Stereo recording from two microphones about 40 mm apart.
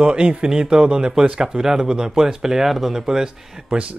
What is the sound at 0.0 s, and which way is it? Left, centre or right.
Speech, right.